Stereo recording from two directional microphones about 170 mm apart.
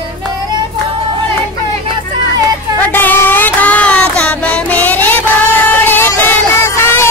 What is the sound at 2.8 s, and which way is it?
Music, 10° left (ahead or behind).